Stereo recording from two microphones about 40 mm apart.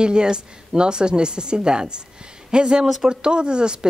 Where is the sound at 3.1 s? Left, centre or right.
Right.